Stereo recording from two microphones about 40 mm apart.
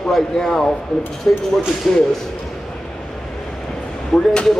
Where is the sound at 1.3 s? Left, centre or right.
Left.